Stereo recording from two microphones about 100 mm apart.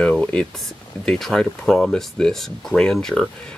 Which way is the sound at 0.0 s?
10° left (ahead or behind).